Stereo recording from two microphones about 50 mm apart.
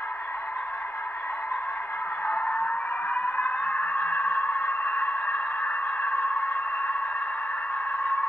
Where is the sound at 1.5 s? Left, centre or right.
Left.